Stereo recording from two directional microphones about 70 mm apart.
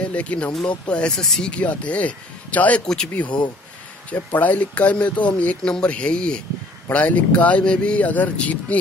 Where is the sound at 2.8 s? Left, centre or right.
Centre.